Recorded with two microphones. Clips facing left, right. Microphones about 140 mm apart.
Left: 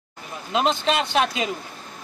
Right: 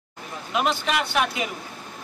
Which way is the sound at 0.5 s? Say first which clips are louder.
Left 3 dB; 25° left (ahead or behind).